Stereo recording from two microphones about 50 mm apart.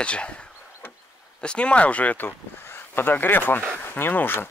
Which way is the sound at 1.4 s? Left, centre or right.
Left.